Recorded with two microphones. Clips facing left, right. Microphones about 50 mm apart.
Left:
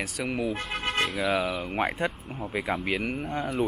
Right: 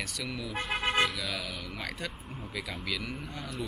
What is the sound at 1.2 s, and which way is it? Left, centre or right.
Speech, left.